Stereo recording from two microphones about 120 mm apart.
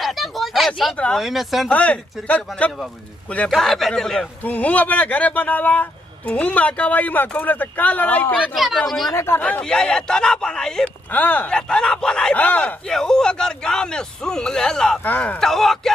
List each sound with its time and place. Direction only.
0.0 s a sound: centre (ahead or behind)
1.7 s speech: 10° left (ahead or behind)
8.5 s speech: centre (ahead or behind)
9.1 s speech: 20° left (ahead or behind)
9.4 s speech: 10° left (ahead or behind)
15.4 s speech: 5° left (ahead or behind)